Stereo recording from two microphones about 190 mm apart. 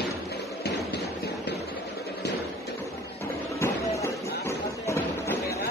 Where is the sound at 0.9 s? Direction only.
60° left (ahead or behind).